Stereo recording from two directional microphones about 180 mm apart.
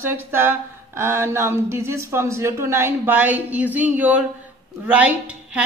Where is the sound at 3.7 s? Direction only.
10° right (ahead or behind).